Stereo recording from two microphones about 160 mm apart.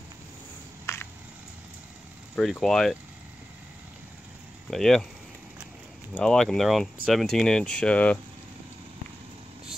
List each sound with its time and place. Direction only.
0.9 s a sound: 15° left (ahead or behind)
2.3 s speech: 5° left (ahead or behind)
4.6 s speech: centre (ahead or behind)
6.1 s speech: 5° left (ahead or behind)